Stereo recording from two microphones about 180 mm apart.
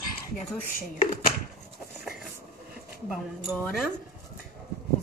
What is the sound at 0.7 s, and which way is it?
Speech, 55° left (ahead or behind).